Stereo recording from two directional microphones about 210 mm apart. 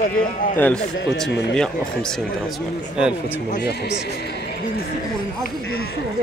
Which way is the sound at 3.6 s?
55° left (ahead or behind).